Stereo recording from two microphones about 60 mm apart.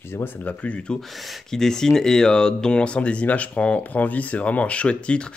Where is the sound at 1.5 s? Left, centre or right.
Centre.